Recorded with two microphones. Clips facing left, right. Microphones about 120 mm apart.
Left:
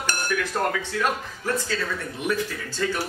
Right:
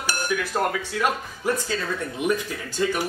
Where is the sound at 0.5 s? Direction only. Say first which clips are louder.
Right 1 dB; 20° right (ahead or behind).